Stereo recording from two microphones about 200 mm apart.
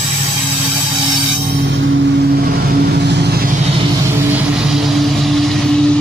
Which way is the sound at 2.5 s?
55° right (ahead or behind).